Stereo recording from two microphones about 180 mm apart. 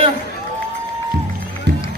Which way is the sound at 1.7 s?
70° right (ahead or behind).